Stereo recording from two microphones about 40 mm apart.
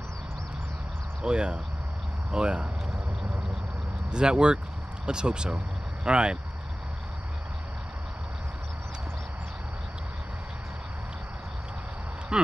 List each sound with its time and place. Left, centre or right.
1.2 s speech: right
4.1 s speech: right
12.3 s speech: centre